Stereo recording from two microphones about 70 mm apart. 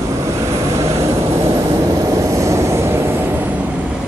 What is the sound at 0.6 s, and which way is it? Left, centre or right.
Vehicle, right.